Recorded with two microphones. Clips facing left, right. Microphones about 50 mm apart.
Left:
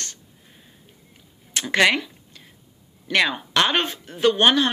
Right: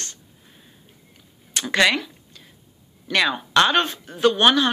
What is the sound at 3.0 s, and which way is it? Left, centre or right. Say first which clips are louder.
Speech: even; left.